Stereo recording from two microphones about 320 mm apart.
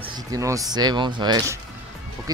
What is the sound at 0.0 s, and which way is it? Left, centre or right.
Speech, centre.